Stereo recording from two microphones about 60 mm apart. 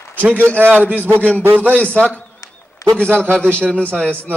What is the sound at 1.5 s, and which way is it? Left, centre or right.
Speech, right.